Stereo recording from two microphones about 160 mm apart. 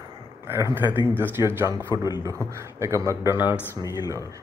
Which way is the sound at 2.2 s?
15° right (ahead or behind).